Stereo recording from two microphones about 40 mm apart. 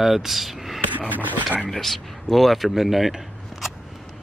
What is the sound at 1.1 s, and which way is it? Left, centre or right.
Speech, right.